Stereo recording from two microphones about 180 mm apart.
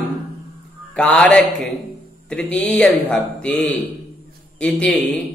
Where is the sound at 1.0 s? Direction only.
5° left (ahead or behind).